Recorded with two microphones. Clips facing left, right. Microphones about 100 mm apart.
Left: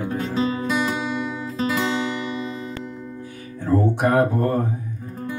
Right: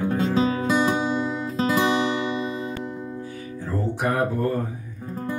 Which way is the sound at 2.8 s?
50° right (ahead or behind).